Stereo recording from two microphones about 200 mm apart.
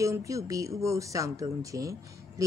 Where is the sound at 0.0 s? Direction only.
15° right (ahead or behind).